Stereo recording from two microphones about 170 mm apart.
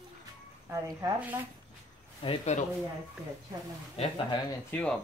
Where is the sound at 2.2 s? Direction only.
30° left (ahead or behind).